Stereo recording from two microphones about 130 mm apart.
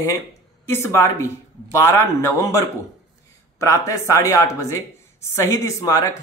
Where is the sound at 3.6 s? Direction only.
25° left (ahead or behind).